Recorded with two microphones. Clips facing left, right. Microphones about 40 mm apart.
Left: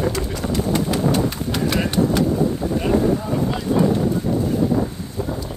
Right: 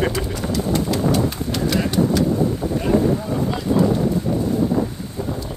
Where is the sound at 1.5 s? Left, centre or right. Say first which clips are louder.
Even; left.